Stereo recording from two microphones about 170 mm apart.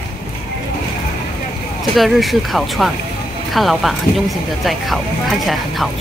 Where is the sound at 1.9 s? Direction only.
Centre (ahead or behind).